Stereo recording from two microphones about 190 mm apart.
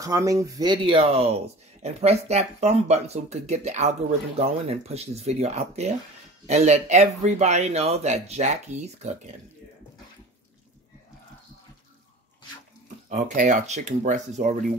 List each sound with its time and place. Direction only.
0.0 s speech: 20° right (ahead or behind); by 9.3 s 35° right (ahead or behind)
13.1 s speech: 40° right (ahead or behind)